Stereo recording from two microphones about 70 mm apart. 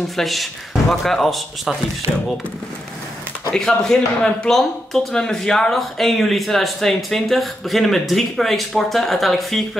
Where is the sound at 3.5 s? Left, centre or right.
Centre.